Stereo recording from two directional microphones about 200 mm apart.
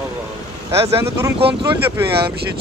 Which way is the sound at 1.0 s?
15° right (ahead or behind).